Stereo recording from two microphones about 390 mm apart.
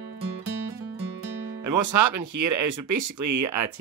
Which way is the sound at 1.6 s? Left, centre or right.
Right.